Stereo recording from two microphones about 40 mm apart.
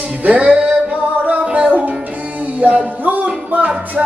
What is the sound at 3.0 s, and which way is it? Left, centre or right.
Music, right.